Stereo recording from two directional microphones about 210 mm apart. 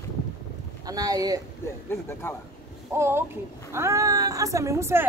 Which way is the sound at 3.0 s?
10° right (ahead or behind).